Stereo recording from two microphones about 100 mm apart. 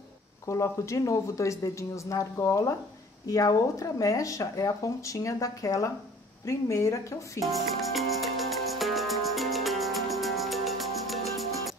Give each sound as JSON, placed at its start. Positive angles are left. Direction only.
{"t": 0.5, "sound": "speech", "side_deg": 30}
{"t": 7.5, "sound": "music", "side_deg": 0}